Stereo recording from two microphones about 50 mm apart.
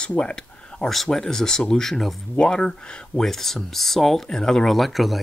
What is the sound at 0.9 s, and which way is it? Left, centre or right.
Speech, centre.